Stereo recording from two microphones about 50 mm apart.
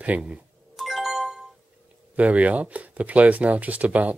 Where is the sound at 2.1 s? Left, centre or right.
Right.